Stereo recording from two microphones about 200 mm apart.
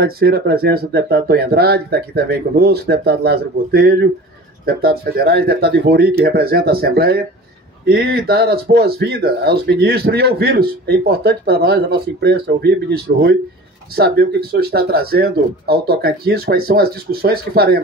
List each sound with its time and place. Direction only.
0.0 s speech: 50° right (ahead or behind)